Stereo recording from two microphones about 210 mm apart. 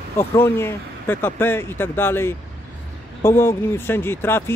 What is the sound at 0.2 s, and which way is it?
Speech, 10° left (ahead or behind).